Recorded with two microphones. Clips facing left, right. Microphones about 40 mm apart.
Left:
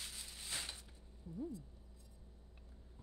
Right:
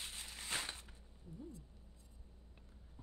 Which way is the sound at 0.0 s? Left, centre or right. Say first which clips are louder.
Right 2 dB; right.